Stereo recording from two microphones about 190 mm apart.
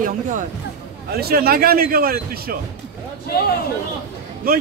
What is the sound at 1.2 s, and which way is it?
Speech, 55° right (ahead or behind).